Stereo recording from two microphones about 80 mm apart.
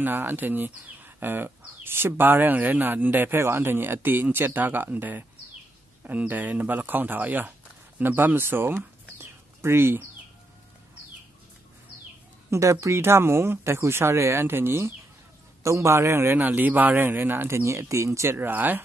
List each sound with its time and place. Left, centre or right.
0.0 s speech: right
12.4 s a man's voice: right
15.6 s a man's voice: right
18.5 s speech: right